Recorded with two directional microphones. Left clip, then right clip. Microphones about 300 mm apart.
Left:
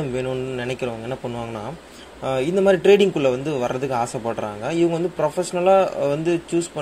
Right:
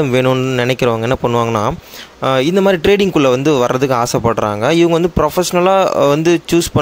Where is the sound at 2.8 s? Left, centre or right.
Right.